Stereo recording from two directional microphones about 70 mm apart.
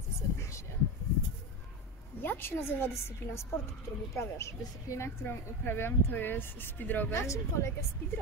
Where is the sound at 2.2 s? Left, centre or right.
Left.